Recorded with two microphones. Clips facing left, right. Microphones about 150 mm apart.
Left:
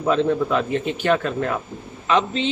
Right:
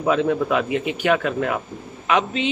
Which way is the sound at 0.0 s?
10° right (ahead or behind).